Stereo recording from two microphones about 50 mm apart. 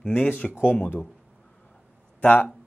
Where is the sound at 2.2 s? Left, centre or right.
Left.